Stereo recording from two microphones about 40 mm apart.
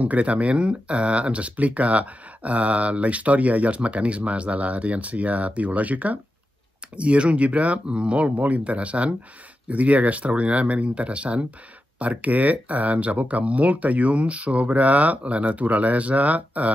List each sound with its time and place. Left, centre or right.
0.0 s speech: right